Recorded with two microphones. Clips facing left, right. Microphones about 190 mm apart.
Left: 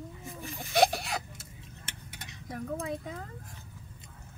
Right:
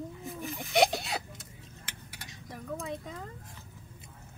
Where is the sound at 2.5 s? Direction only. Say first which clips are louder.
Left 3 dB; 5° left (ahead or behind).